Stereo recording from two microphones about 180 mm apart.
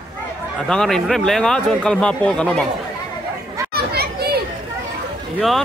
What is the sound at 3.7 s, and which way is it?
Children playing, 60° right (ahead or behind).